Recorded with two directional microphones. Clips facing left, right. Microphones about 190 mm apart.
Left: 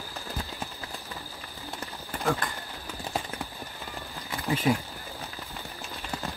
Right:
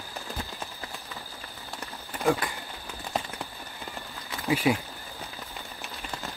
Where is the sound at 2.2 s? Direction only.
15° right (ahead or behind).